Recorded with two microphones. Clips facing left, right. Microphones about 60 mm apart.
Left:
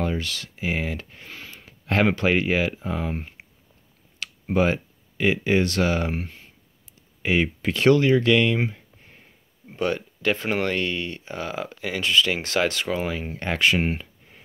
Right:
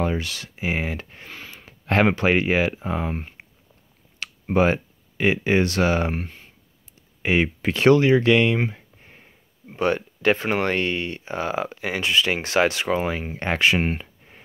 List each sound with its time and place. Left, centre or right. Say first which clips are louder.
0.0 s speech: right 2 dB; right
1.7 s a sound: right 2 dB; right
2.1 s speech: right 2 dB; right
4.2 s speech: right 2 dB; right
6.1 s speech: right 1 dB; centre
7.2 s speech: right 1 dB; right
9.8 s speech: right 3 dB; right